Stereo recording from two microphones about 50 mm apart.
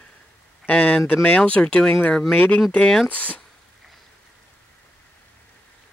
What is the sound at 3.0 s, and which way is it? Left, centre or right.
Speech, left.